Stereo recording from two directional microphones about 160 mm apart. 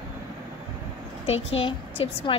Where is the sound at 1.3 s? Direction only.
40° left (ahead or behind).